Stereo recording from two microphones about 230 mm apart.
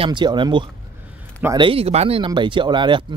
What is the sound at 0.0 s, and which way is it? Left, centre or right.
Speech, centre.